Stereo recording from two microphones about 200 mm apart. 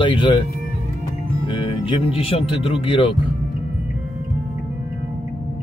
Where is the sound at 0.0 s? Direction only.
25° left (ahead or behind).